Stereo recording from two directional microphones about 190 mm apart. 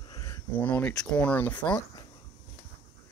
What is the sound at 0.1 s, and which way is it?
Speech, 15° left (ahead or behind).